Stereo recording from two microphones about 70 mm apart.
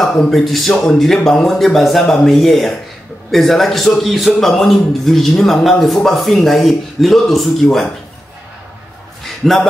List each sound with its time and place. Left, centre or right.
0.0 s a man's voice: centre
9.4 s a man's voice: centre